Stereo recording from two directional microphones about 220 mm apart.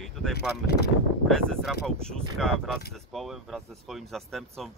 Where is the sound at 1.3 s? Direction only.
5° left (ahead or behind).